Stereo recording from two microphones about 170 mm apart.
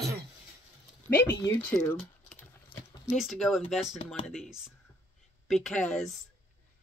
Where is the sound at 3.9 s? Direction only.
35° left (ahead or behind).